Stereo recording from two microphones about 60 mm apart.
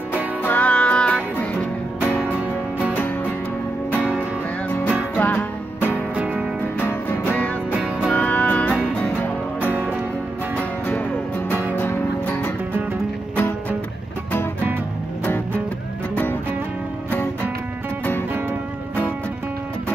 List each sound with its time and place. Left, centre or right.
0.4 s music: left
0.7 s music: centre
5.1 s music: left
6.1 s music: right
6.8 s music: left
7.7 s music: centre
8.1 s music: left